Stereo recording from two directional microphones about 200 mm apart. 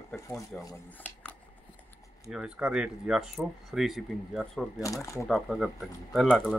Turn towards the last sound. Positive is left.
turn(degrees=0)  # may be behind; listen again after turning